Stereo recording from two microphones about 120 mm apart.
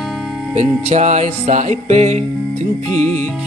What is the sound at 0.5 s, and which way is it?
Music, 70° right (ahead or behind).